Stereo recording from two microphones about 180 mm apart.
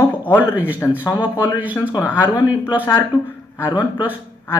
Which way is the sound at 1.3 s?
10° right (ahead or behind).